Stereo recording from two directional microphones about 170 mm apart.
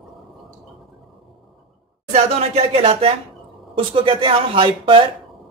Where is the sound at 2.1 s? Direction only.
40° right (ahead or behind).